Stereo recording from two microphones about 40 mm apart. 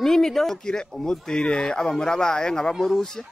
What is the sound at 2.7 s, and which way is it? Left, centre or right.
Speech, centre.